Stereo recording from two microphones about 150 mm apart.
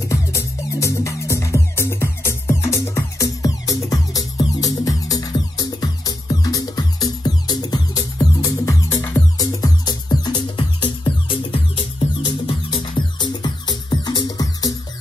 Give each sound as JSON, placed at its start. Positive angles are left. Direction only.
{"t": 0.1, "sound": "music", "side_deg": 20}